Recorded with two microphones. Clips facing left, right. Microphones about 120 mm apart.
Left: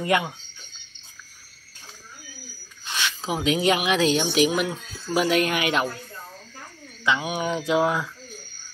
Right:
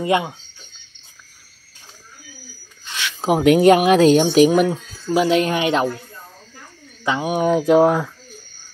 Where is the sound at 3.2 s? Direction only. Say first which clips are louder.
Right 11 dB; 60° right (ahead or behind).